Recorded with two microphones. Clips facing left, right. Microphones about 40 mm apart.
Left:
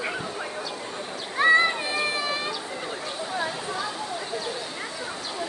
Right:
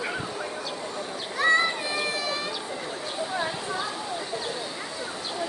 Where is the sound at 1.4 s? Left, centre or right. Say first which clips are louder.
Left 3 dB; left.